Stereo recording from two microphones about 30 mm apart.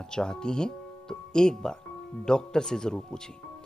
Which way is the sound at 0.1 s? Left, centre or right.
Left.